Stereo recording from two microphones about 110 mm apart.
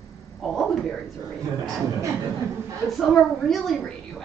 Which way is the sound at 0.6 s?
5° left (ahead or behind).